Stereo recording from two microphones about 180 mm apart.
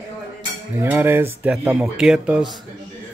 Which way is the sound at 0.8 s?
10° right (ahead or behind).